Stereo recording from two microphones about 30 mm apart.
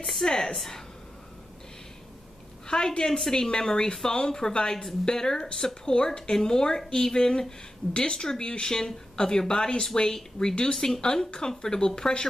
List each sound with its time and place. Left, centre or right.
0.2 s a woman's voice: centre
2.7 s a woman's voice: left
3.2 s speech: centre